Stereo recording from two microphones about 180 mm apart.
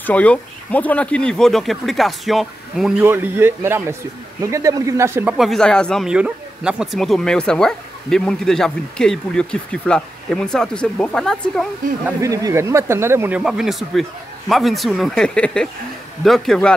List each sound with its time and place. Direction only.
0.0 s speech: 10° left (ahead or behind)
3.0 s speech: 10° right (ahead or behind)
5.4 s speech: 5° left (ahead or behind)
12.2 s speech: 20° right (ahead or behind)
13.4 s speech: centre (ahead or behind)